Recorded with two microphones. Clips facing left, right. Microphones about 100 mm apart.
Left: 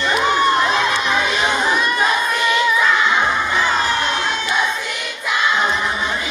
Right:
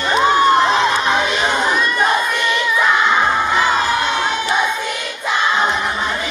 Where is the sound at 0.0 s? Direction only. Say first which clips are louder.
Right 3 dB; 30° right (ahead or behind).